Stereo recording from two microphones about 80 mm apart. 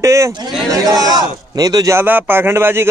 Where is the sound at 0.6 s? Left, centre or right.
Right.